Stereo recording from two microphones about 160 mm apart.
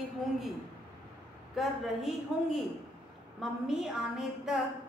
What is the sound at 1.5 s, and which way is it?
Speech, centre (ahead or behind).